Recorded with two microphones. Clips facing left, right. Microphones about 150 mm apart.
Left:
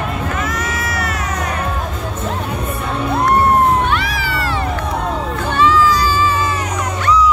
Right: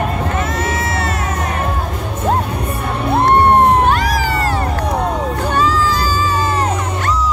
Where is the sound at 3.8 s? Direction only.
40° right (ahead or behind).